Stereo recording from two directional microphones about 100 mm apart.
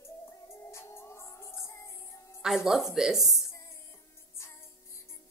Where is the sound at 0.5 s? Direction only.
25° left (ahead or behind).